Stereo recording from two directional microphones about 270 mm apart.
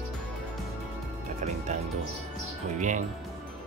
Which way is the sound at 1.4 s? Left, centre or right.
Right.